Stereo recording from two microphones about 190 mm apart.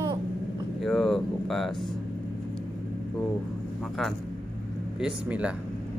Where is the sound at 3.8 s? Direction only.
Centre (ahead or behind).